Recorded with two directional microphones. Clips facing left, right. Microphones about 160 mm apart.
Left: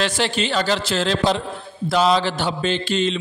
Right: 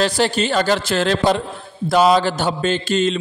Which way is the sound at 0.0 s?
40° right (ahead or behind).